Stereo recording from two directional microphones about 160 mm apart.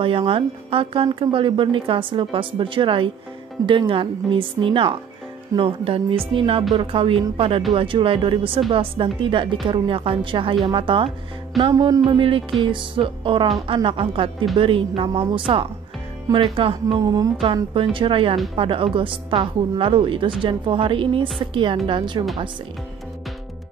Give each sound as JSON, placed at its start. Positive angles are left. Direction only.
{"t": 0.0, "sound": "speech", "side_deg": -35}
{"t": 11.7, "sound": "speech", "side_deg": -20}
{"t": 12.0, "sound": "speech", "side_deg": -35}